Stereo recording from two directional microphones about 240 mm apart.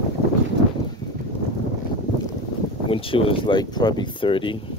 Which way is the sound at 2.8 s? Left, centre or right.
Left.